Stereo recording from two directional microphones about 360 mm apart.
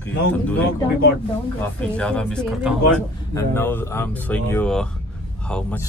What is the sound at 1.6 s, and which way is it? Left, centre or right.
Speech, centre.